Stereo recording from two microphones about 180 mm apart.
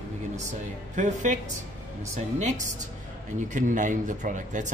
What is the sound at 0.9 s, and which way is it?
Speech, 45° right (ahead or behind).